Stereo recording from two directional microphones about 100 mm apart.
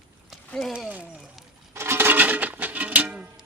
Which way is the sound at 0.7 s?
10° right (ahead or behind).